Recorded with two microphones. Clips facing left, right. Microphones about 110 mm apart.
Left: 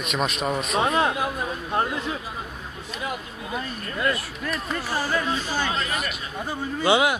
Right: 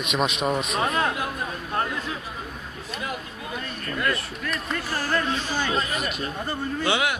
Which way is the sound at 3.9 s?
20° left (ahead or behind).